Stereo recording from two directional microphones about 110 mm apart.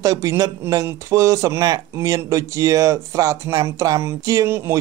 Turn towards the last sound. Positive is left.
turn(degrees=-20)  # may be behind; listen again after turning